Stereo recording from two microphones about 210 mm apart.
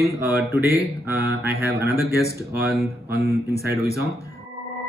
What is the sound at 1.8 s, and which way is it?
Speech, 10° right (ahead or behind).